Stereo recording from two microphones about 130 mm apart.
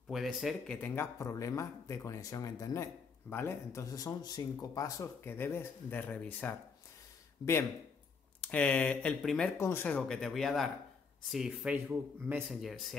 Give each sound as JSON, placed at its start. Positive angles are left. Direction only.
{"t": 0.1, "sound": "speech", "side_deg": 0}
{"t": 0.7, "sound": "speech", "side_deg": 15}
{"t": 8.4, "sound": "speech", "side_deg": 10}
{"t": 9.6, "sound": "speech", "side_deg": 20}